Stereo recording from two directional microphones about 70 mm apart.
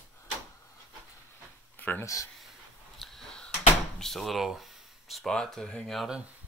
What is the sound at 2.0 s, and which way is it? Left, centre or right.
Speech, left.